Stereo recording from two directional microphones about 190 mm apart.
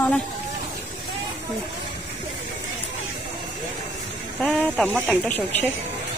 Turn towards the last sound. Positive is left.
turn(degrees=10)  # may be behind; listen again after turning